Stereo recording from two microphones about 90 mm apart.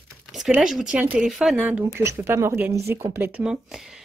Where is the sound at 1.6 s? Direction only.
15° right (ahead or behind).